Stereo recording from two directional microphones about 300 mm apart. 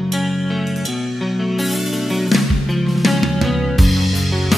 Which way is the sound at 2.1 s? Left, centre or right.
Centre.